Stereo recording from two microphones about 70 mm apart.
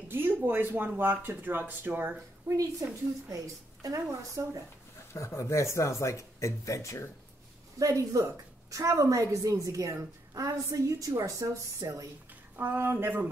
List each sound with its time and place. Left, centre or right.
0.1 s speech: right
2.4 s a woman's voice: right
5.1 s speech: left
7.8 s a woman's voice: right
12.5 s speech: right